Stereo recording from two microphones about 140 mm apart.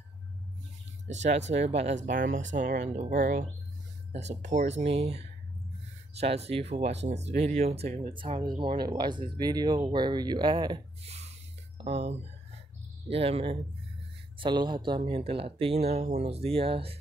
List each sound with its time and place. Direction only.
1.0 s speech: 50° right (ahead or behind)
2.0 s speech: 75° right (ahead or behind); by 3.1 s 60° right (ahead or behind)
3.1 s speech: 75° right (ahead or behind)
4.1 s speech: 50° right (ahead or behind); by 10.8 s 30° right (ahead or behind)
11.8 s speech: 45° right (ahead or behind)
14.4 s speech: 30° right (ahead or behind)